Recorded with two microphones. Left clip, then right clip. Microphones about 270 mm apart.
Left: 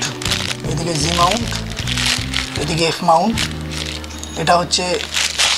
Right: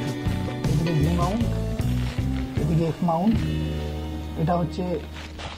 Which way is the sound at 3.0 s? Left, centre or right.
Left.